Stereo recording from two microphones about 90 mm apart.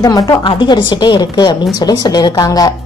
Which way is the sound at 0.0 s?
45° left (ahead or behind).